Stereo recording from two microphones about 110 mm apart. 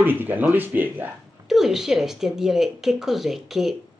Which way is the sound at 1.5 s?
5° right (ahead or behind).